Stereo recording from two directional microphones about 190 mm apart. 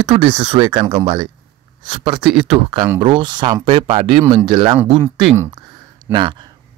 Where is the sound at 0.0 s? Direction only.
30° right (ahead or behind).